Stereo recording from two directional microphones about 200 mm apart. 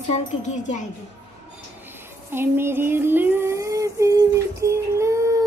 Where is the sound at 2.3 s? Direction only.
10° right (ahead or behind).